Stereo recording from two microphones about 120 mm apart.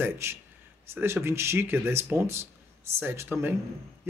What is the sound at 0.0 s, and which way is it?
Speech, 20° right (ahead or behind).